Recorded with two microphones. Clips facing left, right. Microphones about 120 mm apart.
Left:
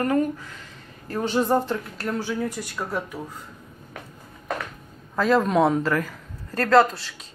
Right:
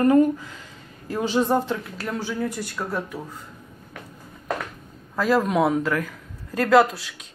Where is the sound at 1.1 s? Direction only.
Centre (ahead or behind).